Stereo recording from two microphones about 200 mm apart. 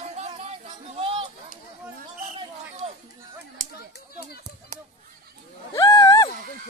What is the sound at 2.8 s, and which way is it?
Chatter, 25° right (ahead or behind).